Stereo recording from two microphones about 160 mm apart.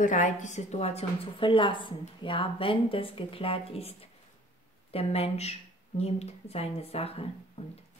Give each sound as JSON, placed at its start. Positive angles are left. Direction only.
{"t": 0.0, "sound": "a woman's voice", "side_deg": 50}